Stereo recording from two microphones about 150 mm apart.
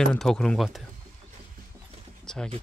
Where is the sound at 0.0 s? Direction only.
5° left (ahead or behind).